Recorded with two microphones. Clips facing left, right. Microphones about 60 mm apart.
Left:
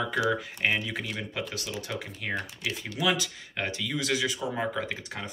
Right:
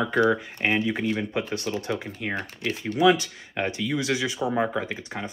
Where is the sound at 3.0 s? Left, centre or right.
Right.